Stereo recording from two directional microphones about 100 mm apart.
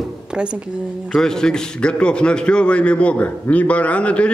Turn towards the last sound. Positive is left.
turn(degrees=10)  # may be behind; listen again after turning